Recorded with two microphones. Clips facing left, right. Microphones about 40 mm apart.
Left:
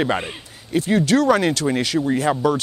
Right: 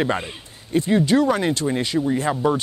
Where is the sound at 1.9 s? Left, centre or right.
Centre.